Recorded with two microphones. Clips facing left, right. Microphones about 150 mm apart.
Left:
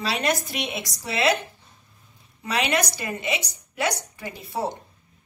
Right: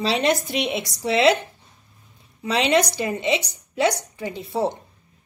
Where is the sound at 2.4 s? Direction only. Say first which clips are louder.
Right 5 dB; 25° right (ahead or behind).